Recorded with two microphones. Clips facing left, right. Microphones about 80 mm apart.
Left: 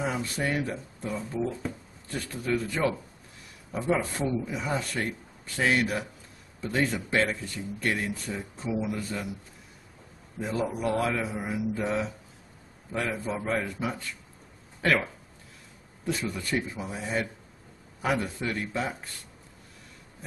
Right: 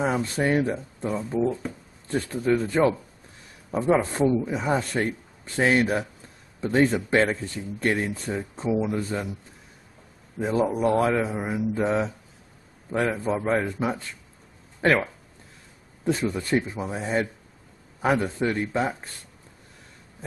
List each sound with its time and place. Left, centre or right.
0.0 s speech: right
10.4 s speech: right
16.1 s speech: right